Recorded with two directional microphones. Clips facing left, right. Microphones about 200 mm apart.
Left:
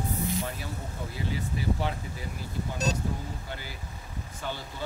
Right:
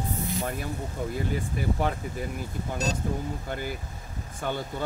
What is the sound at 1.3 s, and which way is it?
Speech, 50° right (ahead or behind).